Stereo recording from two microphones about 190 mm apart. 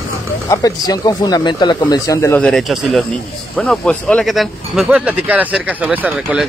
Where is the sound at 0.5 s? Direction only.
20° left (ahead or behind).